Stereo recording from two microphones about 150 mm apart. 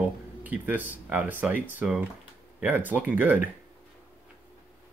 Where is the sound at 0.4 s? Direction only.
10° right (ahead or behind).